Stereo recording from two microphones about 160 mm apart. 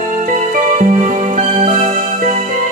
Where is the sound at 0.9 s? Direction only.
45° right (ahead or behind).